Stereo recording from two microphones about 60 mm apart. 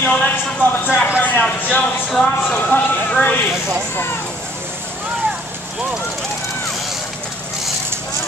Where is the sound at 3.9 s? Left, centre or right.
Left.